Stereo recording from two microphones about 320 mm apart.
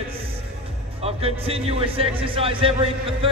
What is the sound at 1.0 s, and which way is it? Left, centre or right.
A man's voice, centre.